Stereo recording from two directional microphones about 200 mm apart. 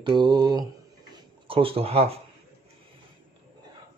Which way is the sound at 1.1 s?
25° right (ahead or behind).